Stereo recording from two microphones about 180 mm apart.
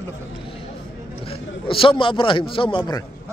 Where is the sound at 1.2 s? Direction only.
30° left (ahead or behind).